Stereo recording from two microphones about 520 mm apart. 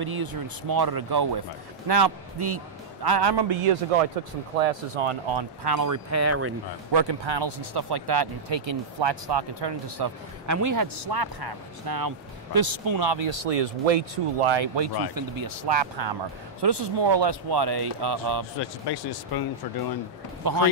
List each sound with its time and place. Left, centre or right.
0.0 s speech: right
6.0 s speech: right
6.9 s speech: right
10.4 s speech: right
13.4 s speech: right
15.1 s speech: right
18.6 s speech: left
20.4 s speech: right